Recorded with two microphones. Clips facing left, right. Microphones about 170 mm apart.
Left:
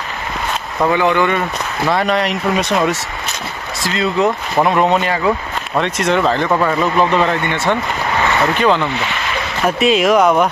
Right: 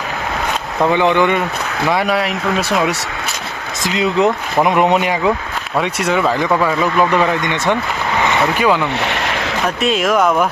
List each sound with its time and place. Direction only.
0.9 s speech: 20° right (ahead or behind)
1.9 s speech: 10° right (ahead or behind)
3.8 s speech: 20° right (ahead or behind)
9.0 s a sound: 70° right (ahead or behind)
9.8 s speech: centre (ahead or behind)